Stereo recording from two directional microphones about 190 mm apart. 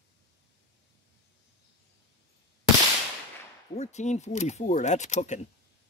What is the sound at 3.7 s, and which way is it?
Speech, 35° left (ahead or behind).